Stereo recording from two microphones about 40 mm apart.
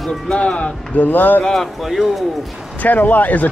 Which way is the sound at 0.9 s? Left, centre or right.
Left.